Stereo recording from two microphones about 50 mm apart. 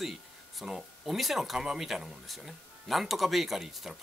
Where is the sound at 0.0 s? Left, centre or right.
Centre.